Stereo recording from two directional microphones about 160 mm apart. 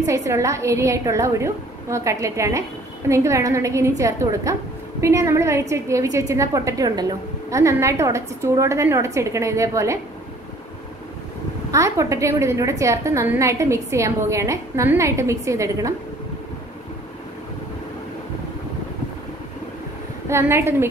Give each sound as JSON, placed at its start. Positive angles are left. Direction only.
{"t": 0.0, "sound": "a woman's voice", "side_deg": -20}
{"t": 11.7, "sound": "a woman's voice", "side_deg": -20}
{"t": 20.2, "sound": "a woman's voice", "side_deg": -15}